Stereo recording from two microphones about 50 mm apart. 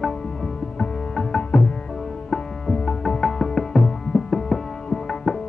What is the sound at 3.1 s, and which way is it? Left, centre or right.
Music, centre.